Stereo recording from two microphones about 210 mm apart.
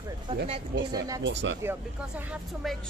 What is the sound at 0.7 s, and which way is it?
Speech, 50° right (ahead or behind).